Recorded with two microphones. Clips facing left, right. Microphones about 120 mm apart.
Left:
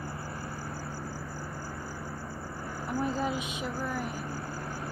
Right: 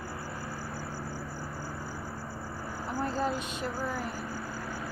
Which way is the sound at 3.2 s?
5° left (ahead or behind).